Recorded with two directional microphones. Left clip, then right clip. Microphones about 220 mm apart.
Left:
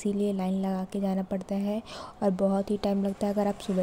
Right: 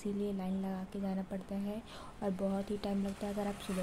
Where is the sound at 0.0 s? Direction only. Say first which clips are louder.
Left 9 dB; 35° left (ahead or behind).